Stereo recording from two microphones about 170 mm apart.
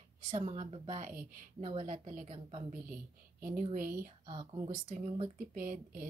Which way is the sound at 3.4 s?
55° right (ahead or behind).